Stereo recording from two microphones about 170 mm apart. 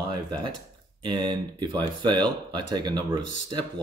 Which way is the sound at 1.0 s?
25° right (ahead or behind).